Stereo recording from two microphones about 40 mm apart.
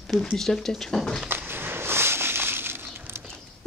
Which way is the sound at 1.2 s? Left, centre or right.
Right.